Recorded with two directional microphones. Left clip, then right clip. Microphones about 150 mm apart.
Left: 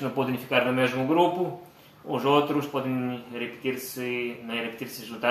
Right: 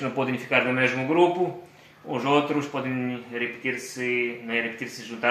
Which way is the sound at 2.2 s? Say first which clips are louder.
Even; 25° right (ahead or behind).